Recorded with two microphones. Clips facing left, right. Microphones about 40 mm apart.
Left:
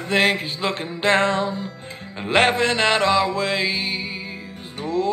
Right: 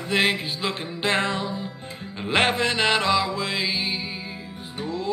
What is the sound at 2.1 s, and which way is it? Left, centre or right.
Music, left.